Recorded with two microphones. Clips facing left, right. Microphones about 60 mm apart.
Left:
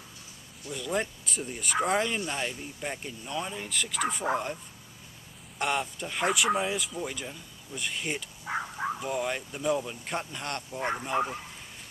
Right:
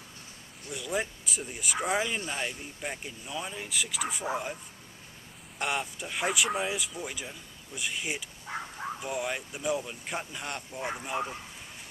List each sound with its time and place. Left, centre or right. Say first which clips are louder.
0.7 s speech: left 2 dB; centre
5.6 s speech: left 2 dB; centre
8.5 s a sound: left 5 dB; left
9.0 s speech: left 2 dB; centre